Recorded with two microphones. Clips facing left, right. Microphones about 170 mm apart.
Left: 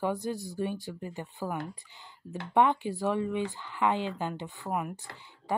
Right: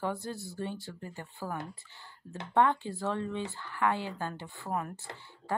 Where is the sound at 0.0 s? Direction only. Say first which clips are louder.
Left 4 dB; 15° left (ahead or behind).